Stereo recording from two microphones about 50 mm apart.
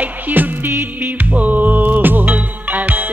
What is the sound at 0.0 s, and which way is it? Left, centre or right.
Music, right.